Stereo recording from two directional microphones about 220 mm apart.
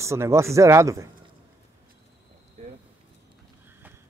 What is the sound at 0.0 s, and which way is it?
Speech, 10° right (ahead or behind).